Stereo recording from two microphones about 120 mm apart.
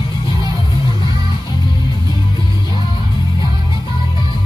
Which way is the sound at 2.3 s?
40° left (ahead or behind).